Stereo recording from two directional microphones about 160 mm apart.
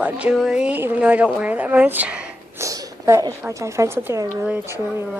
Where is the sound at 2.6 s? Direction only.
20° right (ahead or behind).